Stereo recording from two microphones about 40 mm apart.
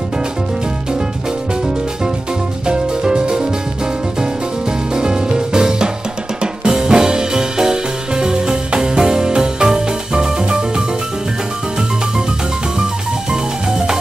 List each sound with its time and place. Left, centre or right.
2.6 s music: centre
4.9 s music: centre
13.3 s music: centre